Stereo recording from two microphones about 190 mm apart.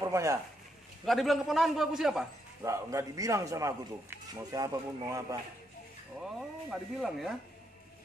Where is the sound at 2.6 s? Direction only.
15° right (ahead or behind).